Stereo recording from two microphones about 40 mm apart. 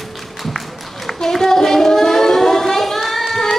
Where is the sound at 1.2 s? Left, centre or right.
Centre.